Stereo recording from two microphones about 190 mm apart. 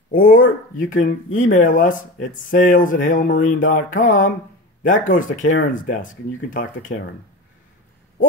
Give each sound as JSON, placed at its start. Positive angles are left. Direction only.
{"t": 0.1, "sound": "speech", "side_deg": 45}